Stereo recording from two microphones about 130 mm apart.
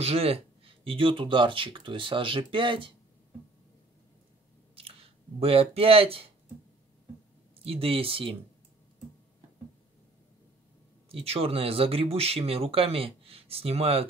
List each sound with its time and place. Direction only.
0.0 s speech: 50° right (ahead or behind)
4.7 s speech: 45° right (ahead or behind)
7.5 s speech: 50° right (ahead or behind)
11.1 s speech: 50° right (ahead or behind)